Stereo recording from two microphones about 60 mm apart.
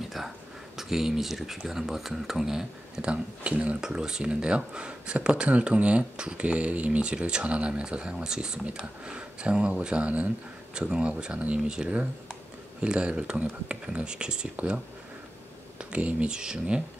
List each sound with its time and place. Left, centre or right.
0.7 s speech: centre
15.9 s speech: right